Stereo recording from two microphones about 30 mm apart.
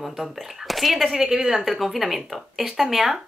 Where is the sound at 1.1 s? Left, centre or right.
Centre.